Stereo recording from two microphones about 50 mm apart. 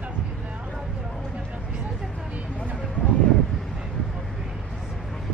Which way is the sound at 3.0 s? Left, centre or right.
Right.